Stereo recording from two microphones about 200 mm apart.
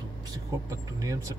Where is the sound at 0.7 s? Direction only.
15° right (ahead or behind).